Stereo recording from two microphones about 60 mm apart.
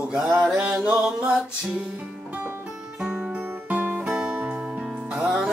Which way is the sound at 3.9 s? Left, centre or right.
Centre.